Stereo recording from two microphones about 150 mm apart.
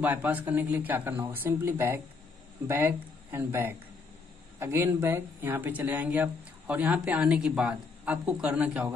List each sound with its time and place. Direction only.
0.0 s speech: 10° right (ahead or behind)